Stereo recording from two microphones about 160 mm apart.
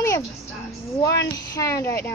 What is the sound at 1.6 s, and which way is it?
Speech, 20° left (ahead or behind).